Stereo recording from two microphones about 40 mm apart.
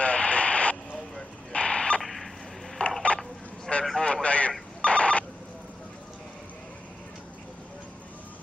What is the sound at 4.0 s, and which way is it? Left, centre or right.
Speech, left.